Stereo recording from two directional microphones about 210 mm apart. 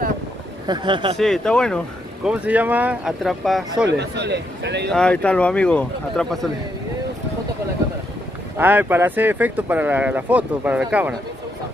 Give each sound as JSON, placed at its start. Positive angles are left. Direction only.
{"t": 0.7, "sound": "speech", "side_deg": -20}
{"t": 1.1, "sound": "speech", "side_deg": 0}
{"t": 4.0, "sound": "a man's voice", "side_deg": -55}
{"t": 4.9, "sound": "speech", "side_deg": 5}
{"t": 8.5, "sound": "speech", "side_deg": -10}